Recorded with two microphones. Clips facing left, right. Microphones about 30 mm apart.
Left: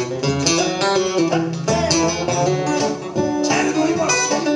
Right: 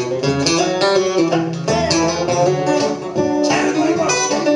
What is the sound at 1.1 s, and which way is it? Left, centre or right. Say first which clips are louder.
Music: right 2 dB; right.